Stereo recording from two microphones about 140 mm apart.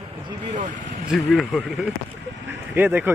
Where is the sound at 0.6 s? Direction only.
70° right (ahead or behind).